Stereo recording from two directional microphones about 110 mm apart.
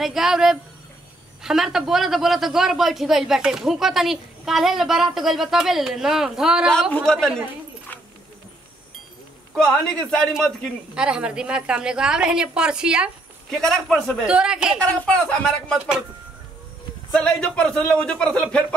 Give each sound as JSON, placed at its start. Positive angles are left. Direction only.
{"t": 0.0, "sound": "a man's voice", "side_deg": -5}
{"t": 9.5, "sound": "a man's voice", "side_deg": 5}
{"t": 11.0, "sound": "a woman's voice", "side_deg": -10}
{"t": 13.5, "sound": "a man's voice", "side_deg": 5}
{"t": 14.8, "sound": "a man's voice", "side_deg": 10}
{"t": 17.1, "sound": "a man's voice", "side_deg": 5}